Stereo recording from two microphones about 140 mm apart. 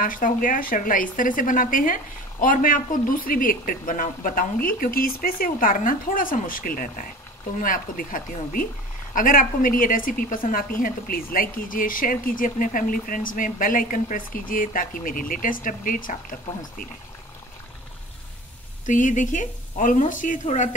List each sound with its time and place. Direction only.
0.0 s a woman's voice: 75° left (ahead or behind)
18.9 s speech: 65° left (ahead or behind)
20.4 s speech: 60° left (ahead or behind)